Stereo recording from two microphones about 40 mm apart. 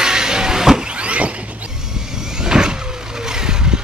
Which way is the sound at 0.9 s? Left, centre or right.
Right.